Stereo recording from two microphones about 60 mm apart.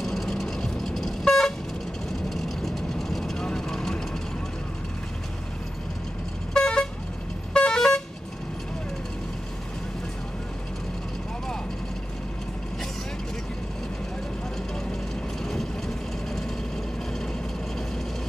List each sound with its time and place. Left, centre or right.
0.0 s vehicle: centre
6.5 s vehicle: centre